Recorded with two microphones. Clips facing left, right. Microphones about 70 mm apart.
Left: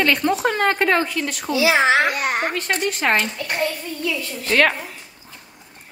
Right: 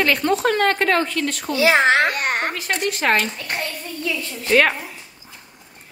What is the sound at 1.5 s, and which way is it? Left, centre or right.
A child's voice, right.